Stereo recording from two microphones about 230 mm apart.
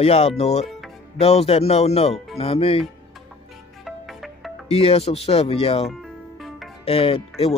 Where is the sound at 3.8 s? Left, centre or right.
Centre.